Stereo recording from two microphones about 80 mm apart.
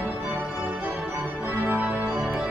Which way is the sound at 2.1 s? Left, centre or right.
Centre.